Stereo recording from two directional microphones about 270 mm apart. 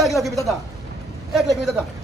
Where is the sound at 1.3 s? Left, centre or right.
Centre.